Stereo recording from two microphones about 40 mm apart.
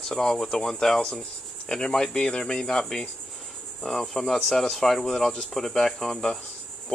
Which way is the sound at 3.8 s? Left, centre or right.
Centre.